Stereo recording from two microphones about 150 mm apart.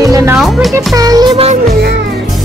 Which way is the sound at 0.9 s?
25° right (ahead or behind).